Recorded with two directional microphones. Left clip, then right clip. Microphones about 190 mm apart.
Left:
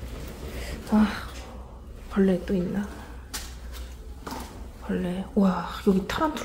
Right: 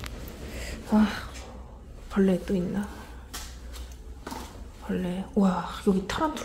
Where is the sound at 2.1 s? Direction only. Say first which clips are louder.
Left 1 dB; 10° right (ahead or behind).